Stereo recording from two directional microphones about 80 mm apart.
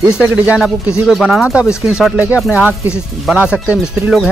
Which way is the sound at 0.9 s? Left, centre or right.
Centre.